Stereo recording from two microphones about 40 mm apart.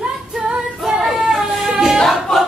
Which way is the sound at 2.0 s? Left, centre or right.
Centre.